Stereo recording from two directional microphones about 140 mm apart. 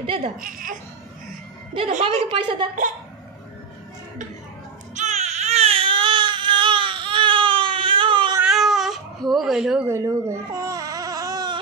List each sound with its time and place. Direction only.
0.0 s a woman's voice: 40° right (ahead or behind)
0.4 s speech: 75° right (ahead or behind)
2.0 s a woman's voice: 40° right (ahead or behind)
4.9 s baby cry: 55° right (ahead or behind); by 8.4 s 35° right (ahead or behind)
8.5 s baby cry: centre (ahead or behind)
9.8 s baby cry: 20° right (ahead or behind)